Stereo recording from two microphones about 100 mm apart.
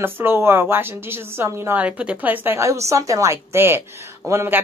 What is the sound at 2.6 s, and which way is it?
A woman's voice, 30° right (ahead or behind).